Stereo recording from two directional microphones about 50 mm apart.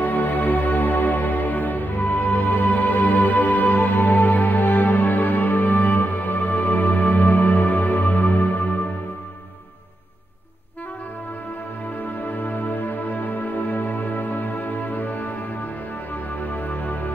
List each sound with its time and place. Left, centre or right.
0.0 s music: left
12.0 s music: left
16.4 s music: left